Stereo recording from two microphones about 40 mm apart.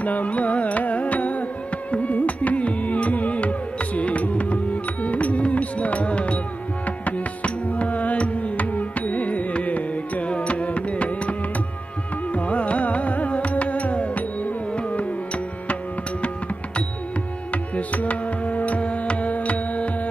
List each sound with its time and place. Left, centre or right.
0.0 s carnatic music: left
7.1 s music: left
12.4 s music: left
17.7 s music: left